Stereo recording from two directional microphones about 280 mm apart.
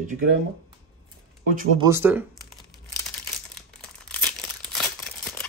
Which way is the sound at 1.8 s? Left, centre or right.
Centre.